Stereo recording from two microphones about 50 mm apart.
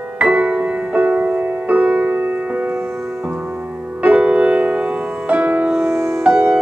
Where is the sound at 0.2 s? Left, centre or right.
Right.